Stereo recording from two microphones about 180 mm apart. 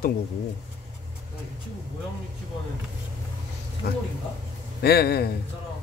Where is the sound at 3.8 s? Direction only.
60° left (ahead or behind).